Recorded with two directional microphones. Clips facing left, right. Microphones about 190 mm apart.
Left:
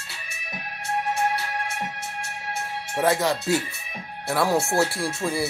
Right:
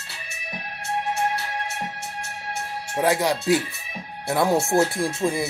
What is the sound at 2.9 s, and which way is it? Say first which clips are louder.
Speech: right 1 dB; 15° right (ahead or behind).